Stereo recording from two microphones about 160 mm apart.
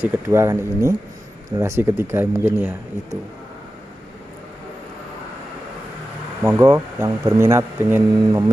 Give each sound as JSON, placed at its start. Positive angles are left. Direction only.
{"t": 0.0, "sound": "speech", "side_deg": -15}
{"t": 6.4, "sound": "speech", "side_deg": -20}